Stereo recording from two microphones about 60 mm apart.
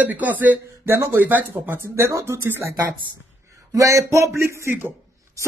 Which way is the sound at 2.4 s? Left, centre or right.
Right.